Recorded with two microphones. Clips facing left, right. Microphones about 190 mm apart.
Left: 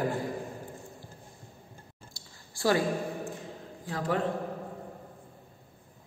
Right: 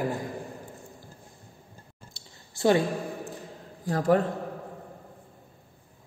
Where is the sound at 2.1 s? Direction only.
25° right (ahead or behind).